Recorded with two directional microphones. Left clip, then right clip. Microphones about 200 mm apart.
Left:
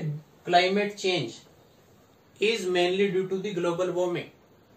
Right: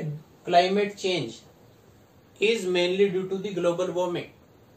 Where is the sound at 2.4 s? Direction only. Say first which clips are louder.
Right 1 dB; 10° right (ahead or behind).